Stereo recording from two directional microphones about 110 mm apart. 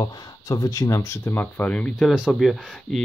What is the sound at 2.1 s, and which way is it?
Speech, 5° right (ahead or behind).